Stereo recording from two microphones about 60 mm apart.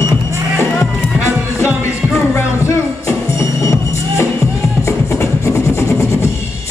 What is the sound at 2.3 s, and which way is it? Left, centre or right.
Music, left.